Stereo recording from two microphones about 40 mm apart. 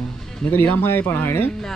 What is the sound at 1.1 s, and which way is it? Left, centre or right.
Speech, left.